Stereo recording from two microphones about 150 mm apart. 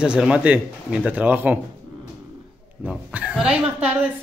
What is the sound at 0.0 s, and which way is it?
Speech, 5° right (ahead or behind).